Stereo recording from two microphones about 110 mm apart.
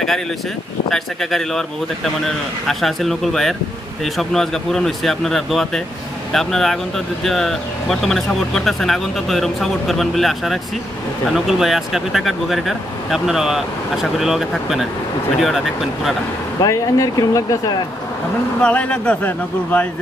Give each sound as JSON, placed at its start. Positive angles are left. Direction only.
{"t": 0.8, "sound": "speech", "side_deg": 5}
{"t": 16.6, "sound": "speech", "side_deg": 30}
{"t": 18.6, "sound": "speech", "side_deg": 10}